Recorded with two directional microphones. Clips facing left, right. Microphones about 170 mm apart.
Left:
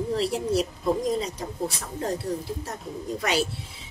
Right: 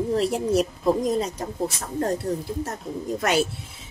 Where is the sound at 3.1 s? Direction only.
50° right (ahead or behind).